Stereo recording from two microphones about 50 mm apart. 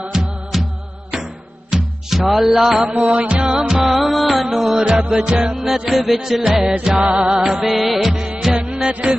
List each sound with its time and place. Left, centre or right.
0.1 s music: centre
2.8 s music: right
3.4 s music: centre
3.8 s music: centre
5.2 s music: centre
8.5 s music: centre